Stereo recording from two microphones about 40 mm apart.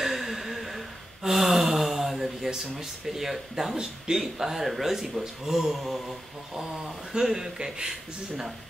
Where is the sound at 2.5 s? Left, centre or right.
Centre.